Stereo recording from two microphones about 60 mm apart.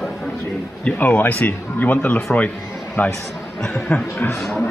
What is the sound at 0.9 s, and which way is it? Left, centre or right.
Speech, left.